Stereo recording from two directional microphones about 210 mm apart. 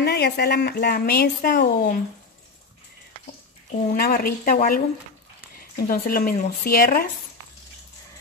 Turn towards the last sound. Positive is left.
turn(degrees=45)  # may be behind; listen again after turning